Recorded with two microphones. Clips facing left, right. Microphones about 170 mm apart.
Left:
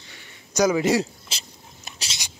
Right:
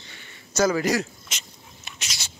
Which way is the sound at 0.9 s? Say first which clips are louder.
Left 3 dB; 30° left (ahead or behind).